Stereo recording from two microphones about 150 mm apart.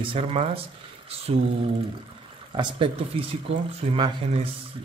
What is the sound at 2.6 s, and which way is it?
A man's voice, 35° right (ahead or behind).